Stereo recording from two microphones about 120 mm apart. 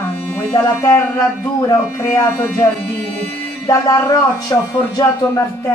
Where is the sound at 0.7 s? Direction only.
25° left (ahead or behind).